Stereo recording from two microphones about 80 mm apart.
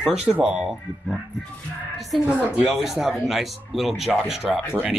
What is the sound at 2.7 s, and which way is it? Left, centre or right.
Speech, centre.